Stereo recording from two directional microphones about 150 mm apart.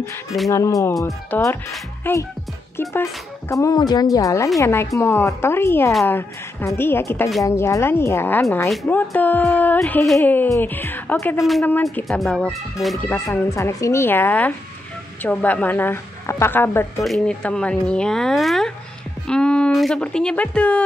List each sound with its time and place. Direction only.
0.5 s a woman's voice: 20° left (ahead or behind)
12.1 s speech: centre (ahead or behind)
13.0 s a woman's voice: 15° left (ahead or behind)
17.0 s a woman's voice: 5° left (ahead or behind)